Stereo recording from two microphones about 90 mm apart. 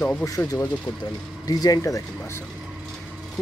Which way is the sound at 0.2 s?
40° left (ahead or behind).